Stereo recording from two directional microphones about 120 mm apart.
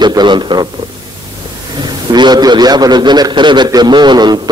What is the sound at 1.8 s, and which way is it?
A man's voice, 35° right (ahead or behind).